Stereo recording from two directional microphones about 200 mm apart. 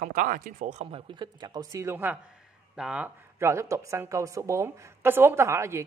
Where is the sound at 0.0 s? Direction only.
45° right (ahead or behind).